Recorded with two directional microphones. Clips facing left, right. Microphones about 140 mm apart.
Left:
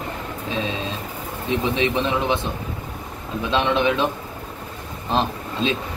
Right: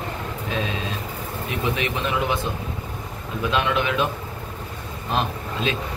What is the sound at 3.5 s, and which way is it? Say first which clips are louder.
Speech: left 3 dB; 25° left (ahead or behind).